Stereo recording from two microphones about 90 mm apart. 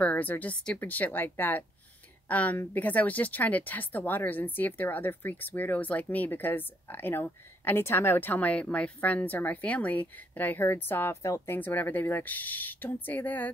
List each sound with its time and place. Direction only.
0.0 s speech: 20° left (ahead or behind)